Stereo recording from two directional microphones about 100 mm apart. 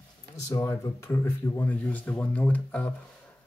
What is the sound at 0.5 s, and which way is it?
Speech, 30° left (ahead or behind).